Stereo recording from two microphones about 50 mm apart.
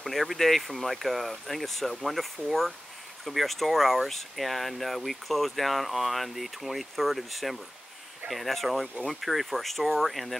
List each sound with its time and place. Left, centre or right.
0.0 s speech: centre